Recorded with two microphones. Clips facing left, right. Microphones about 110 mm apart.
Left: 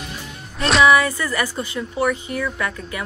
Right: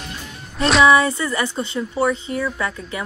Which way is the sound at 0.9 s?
25° right (ahead or behind).